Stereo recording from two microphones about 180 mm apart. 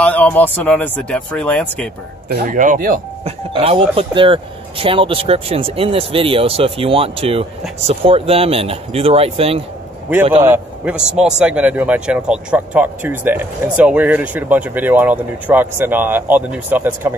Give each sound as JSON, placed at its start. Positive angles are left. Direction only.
{"t": 0.0, "sound": "speech", "side_deg": 10}
{"t": 2.2, "sound": "speech", "side_deg": -50}
{"t": 3.3, "sound": "speech", "side_deg": -35}
{"t": 10.4, "sound": "a man's voice", "side_deg": -10}